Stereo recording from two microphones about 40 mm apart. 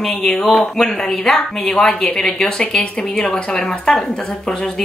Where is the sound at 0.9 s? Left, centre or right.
Left.